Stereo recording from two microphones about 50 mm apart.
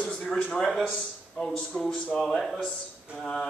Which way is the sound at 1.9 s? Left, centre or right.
Left.